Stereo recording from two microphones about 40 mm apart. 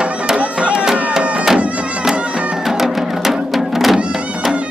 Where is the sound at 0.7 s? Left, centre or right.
Centre.